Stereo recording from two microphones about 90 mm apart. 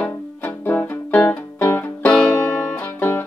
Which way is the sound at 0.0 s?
20° left (ahead or behind).